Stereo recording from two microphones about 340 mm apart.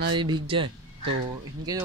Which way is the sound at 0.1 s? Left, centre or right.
Centre.